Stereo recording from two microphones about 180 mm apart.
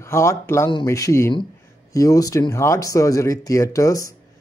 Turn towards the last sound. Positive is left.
turn(degrees=20)  # may be behind; listen again after turning